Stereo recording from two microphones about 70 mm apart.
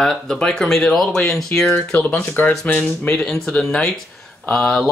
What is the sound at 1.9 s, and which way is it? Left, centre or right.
Speech, left.